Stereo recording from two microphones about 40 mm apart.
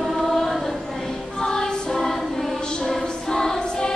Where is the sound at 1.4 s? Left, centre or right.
Centre.